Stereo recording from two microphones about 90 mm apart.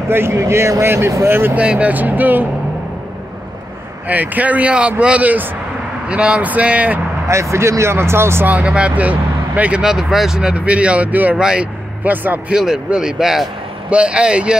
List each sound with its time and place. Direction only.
0.1 s speech: 25° right (ahead or behind)
4.1 s speech: 20° right (ahead or behind)
7.2 s speech: 35° right (ahead or behind)
8.5 s speech: 10° right (ahead or behind)
12.5 s speech: 10° right (ahead or behind)